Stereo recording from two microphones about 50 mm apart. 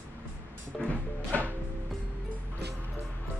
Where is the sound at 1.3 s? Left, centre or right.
Left.